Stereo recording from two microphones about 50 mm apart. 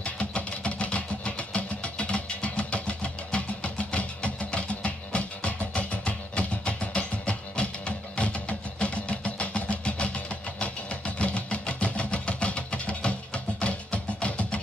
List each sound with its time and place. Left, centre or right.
0.0 s vehicle: left